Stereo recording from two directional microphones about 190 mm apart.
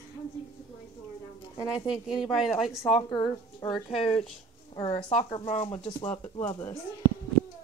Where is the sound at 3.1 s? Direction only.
10° left (ahead or behind).